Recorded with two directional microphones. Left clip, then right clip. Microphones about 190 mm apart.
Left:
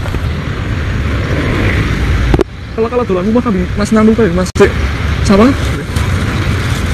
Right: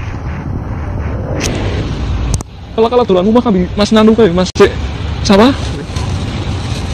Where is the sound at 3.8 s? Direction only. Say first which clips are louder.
Right 2 dB; 35° right (ahead or behind).